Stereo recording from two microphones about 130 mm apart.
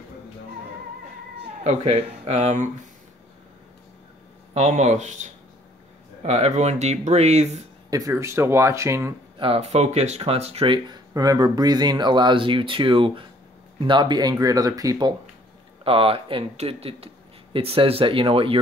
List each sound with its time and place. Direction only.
1.6 s speech: 55° right (ahead or behind); by 2.9 s 70° right (ahead or behind)
4.6 s speech: 65° right (ahead or behind)
6.2 s speech: 55° right (ahead or behind)
7.9 s speech: 25° right (ahead or behind)
9.4 s speech: 50° right (ahead or behind)
10.9 s speech: 30° right (ahead or behind)
15.8 s speech: 45° right (ahead or behind)